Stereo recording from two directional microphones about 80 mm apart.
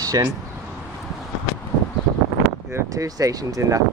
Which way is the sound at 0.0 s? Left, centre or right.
Right.